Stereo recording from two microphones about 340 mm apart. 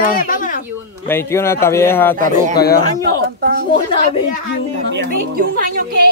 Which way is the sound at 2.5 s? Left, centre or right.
Left.